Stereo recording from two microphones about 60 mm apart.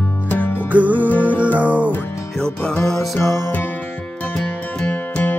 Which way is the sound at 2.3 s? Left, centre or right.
Centre.